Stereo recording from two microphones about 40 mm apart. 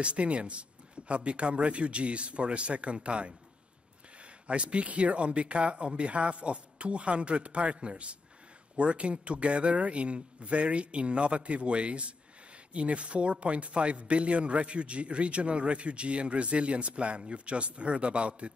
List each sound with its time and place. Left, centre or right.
0.0 s a man's voice: right